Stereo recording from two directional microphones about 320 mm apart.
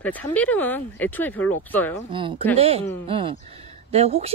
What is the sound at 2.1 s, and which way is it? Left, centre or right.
Speech, centre.